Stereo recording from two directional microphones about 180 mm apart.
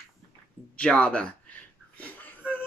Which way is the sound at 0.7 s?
5° left (ahead or behind).